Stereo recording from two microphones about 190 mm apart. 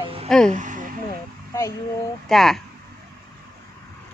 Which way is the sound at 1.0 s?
15° left (ahead or behind).